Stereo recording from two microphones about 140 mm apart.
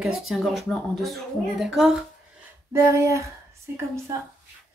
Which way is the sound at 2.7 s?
20° right (ahead or behind).